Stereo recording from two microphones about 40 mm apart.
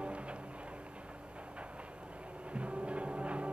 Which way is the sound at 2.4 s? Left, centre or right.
Right.